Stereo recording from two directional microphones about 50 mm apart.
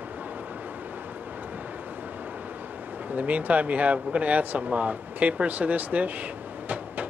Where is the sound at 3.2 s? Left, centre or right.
Right.